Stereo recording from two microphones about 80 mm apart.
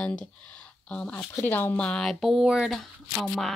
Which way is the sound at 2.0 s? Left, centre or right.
Centre.